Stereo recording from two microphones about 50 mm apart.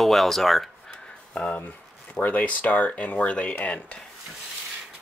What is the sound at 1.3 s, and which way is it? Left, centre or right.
Speech, left.